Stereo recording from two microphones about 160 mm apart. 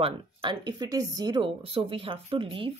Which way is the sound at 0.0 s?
30° right (ahead or behind).